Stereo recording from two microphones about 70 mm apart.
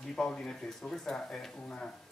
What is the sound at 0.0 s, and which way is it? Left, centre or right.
A man's voice, centre.